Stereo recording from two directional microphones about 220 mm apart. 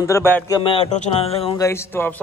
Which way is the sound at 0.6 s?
25° left (ahead or behind).